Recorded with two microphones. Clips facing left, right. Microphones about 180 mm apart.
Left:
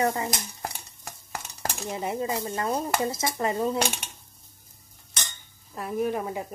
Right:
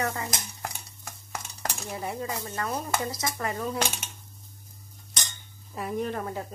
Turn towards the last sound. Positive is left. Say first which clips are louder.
# left 3 dB
turn(degrees=15)  # may be behind; listen again after turning